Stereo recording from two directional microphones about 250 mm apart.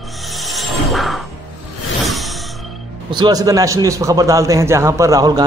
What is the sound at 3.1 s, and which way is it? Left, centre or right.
A man's voice, centre.